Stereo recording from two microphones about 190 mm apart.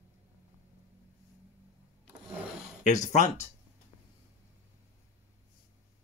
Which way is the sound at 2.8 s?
40° left (ahead or behind).